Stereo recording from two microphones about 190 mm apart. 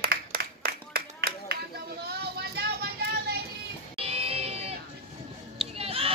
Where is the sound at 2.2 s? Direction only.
60° right (ahead or behind).